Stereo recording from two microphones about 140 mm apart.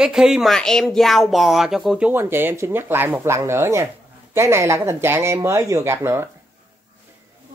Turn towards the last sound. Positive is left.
turn(degrees=-20)  # may be behind; listen again after turning